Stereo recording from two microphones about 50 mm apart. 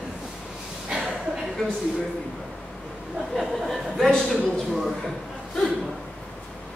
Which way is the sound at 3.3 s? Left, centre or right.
Centre.